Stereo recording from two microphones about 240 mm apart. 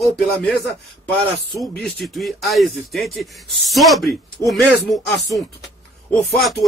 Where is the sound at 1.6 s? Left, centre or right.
Centre.